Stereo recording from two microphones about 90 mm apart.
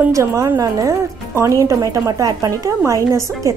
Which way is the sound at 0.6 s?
40° right (ahead or behind).